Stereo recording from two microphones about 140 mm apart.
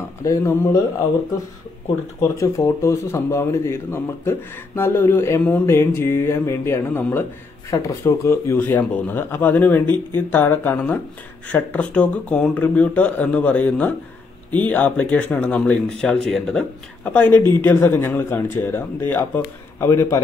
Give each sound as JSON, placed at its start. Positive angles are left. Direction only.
{"t": 0.2, "sound": "speech", "side_deg": 20}
{"t": 2.2, "sound": "a man's voice", "side_deg": 20}